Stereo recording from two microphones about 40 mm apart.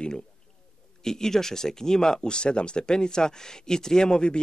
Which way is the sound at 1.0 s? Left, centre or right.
Centre.